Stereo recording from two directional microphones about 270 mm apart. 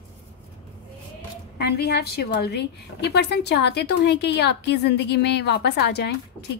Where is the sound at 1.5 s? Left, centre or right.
Left.